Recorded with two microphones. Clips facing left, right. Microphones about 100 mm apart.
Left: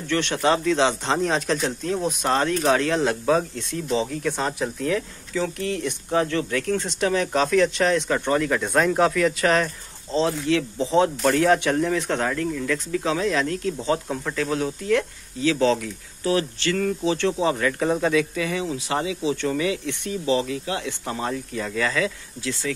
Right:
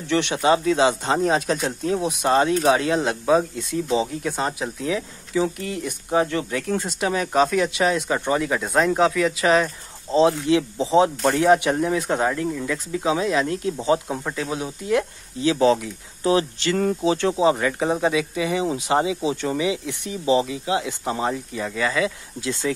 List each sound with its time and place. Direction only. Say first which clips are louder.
0.1 s speech: right 2 dB; 15° right (ahead or behind)
10.1 s speech: right 4 dB; 15° right (ahead or behind)
16.7 s speech: right 3 dB; 25° right (ahead or behind)
17.2 s speech: right 3 dB; 15° right (ahead or behind)